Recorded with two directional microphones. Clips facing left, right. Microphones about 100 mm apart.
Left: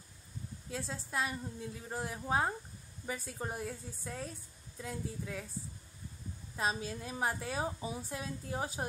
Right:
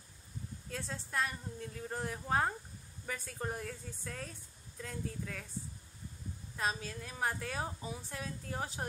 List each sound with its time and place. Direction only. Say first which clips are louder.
0.7 s a woman's voice: left 2 dB; 10° left (ahead or behind)
6.5 s a woman's voice: left 2 dB; 20° left (ahead or behind)